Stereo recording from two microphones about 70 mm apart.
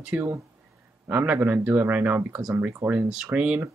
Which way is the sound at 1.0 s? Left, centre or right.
Right.